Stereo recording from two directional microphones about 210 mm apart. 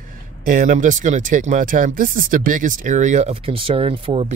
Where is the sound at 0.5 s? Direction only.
40° right (ahead or behind).